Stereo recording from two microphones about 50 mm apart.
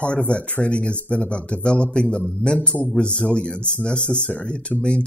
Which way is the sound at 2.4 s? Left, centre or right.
Left.